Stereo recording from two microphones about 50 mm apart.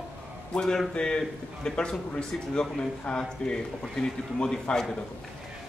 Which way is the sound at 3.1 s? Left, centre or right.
Centre.